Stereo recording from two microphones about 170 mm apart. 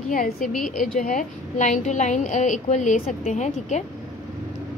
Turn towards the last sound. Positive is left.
turn(degrees=45)  # may be behind; listen again after turning